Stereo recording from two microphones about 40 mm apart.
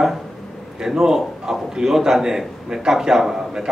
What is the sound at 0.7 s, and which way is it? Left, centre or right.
A man's voice, centre.